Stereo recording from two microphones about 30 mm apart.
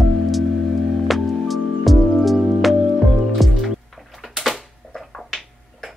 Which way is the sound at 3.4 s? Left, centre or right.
Centre.